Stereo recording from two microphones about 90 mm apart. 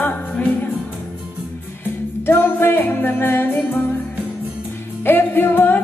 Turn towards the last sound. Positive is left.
turn(degrees=20)  # may be behind; listen again after turning